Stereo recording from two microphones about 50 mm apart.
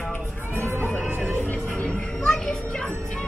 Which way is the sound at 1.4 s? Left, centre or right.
Left.